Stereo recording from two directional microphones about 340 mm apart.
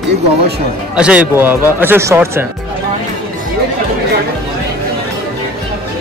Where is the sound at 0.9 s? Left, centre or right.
Centre.